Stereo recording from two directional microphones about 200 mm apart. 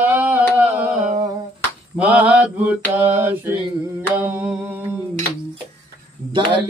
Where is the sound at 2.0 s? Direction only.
5° right (ahead or behind).